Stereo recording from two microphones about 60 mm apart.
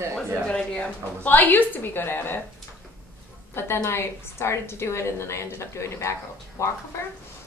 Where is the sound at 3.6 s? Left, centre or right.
Left.